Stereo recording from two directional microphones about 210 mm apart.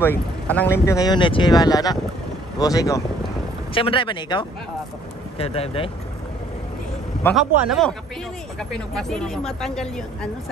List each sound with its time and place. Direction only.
0.0 s speech: 10° left (ahead or behind); by 5.9 s 25° left (ahead or behind)
7.3 s a woman's voice: centre (ahead or behind)